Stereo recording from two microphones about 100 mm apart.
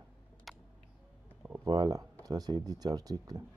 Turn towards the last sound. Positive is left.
turn(degrees=-40)  # may be behind; listen again after turning